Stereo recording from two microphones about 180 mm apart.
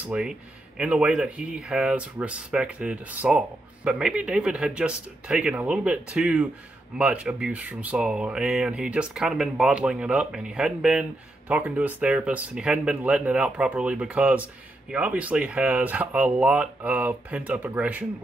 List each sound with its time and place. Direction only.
0.0 s speech: 5° right (ahead or behind)